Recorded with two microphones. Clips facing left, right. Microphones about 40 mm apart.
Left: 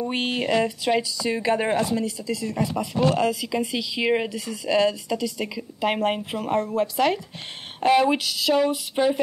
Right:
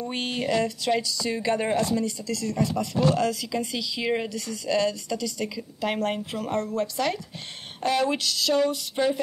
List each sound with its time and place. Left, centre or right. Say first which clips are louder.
0.0 s speech: left 3 dB; centre